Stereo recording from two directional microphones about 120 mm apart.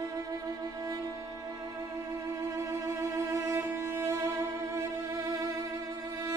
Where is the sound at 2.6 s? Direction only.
25° right (ahead or behind).